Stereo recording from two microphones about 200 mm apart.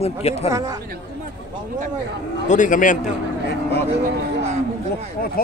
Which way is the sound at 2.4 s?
40° left (ahead or behind).